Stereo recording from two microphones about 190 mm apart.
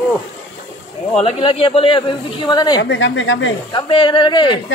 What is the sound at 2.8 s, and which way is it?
Speech, 75° left (ahead or behind).